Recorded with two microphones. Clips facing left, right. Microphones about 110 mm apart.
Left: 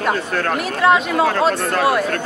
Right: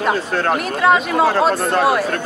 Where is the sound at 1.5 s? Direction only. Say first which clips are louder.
Right 3 dB; 30° right (ahead or behind).